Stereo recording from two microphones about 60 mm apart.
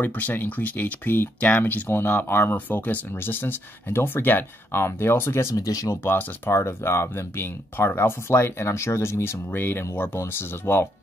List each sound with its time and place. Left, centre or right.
0.0 s speech: left
6.0 s speech: left
6.5 s speech: left